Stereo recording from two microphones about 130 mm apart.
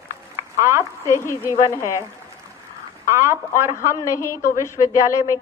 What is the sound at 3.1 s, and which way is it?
Speech, 20° right (ahead or behind).